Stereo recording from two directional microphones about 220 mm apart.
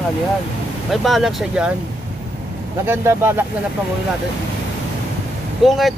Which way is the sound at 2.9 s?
10° right (ahead or behind).